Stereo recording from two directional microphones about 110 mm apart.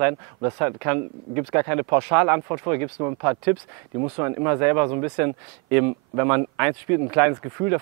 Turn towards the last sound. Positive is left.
turn(degrees=-20)  # may be behind; listen again after turning